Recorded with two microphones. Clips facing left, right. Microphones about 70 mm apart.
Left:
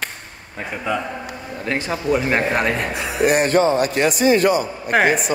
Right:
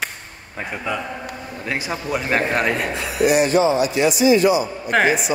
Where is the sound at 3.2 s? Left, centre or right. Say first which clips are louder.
Even; left.